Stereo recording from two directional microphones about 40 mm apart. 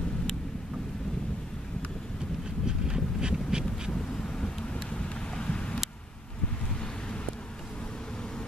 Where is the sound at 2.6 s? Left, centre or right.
Centre.